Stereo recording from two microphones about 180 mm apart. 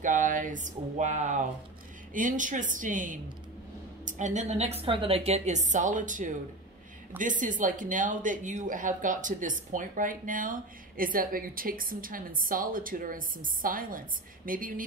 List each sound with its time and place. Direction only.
0.0 s a woman's voice: 45° right (ahead or behind)